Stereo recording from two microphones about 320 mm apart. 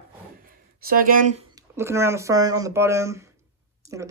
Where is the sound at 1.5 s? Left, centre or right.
Centre.